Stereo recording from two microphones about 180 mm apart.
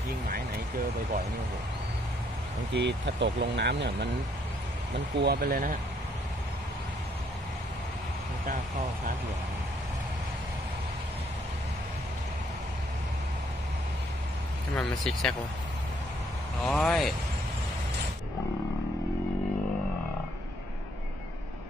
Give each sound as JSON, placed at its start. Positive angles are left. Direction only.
{"t": 2.7, "sound": "speech", "side_deg": -75}
{"t": 14.8, "sound": "speech", "side_deg": 5}
{"t": 16.6, "sound": "speech", "side_deg": 0}